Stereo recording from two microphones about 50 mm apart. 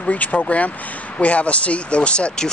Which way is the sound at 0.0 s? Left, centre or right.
Left.